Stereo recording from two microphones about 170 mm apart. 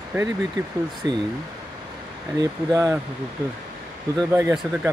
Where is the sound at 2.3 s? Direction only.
20° right (ahead or behind).